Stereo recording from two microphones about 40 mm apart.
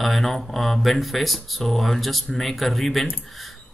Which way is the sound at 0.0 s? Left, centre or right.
Centre.